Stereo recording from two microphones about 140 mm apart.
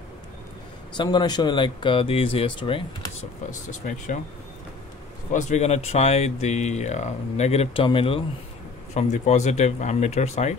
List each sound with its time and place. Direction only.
0.9 s speech: 30° left (ahead or behind)
3.8 s speech: 70° left (ahead or behind)
5.3 s speech: 55° left (ahead or behind); by 8.2 s 40° left (ahead or behind)
8.9 s speech: 55° left (ahead or behind)